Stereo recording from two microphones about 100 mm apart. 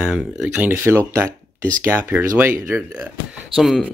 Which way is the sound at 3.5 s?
Centre (ahead or behind).